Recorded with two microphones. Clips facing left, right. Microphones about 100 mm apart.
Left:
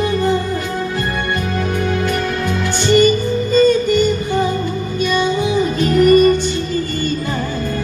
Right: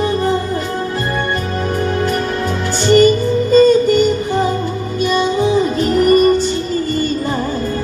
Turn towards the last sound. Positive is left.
turn(degrees=-35)  # may be behind; listen again after turning